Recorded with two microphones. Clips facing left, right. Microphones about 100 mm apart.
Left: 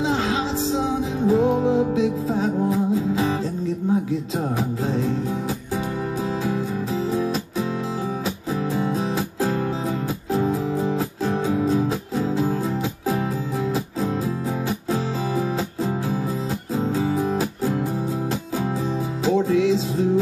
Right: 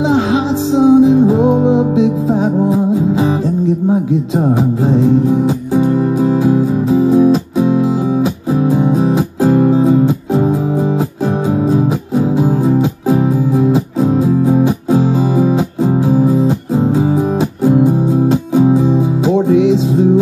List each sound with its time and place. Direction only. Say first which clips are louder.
0.1 s music: right 10 dB; 20° right (ahead or behind)
3.6 s music: right 7 dB; 20° right (ahead or behind)
8.6 s music: right 11 dB; 15° right (ahead or behind)
11.7 s music: right 8 dB; 15° right (ahead or behind)
17.6 s music: right 13 dB; 20° right (ahead or behind)